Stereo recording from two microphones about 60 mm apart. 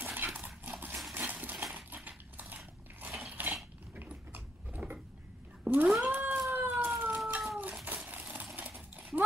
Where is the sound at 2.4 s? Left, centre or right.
Right.